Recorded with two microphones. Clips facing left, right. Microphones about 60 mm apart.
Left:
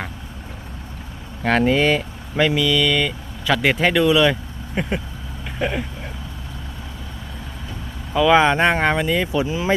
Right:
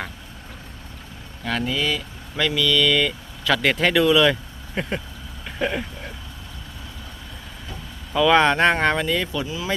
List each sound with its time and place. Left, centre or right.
1.4 s speech: left
2.3 s speech: left; by 5.0 s centre
5.6 s a sound: centre
8.1 s speech: centre; by 9.8 s left